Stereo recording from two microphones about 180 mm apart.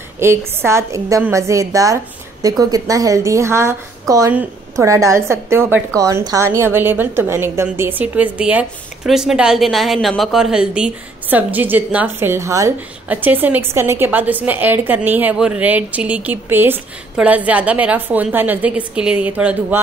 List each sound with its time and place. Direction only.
0.2 s a woman's voice: 15° right (ahead or behind)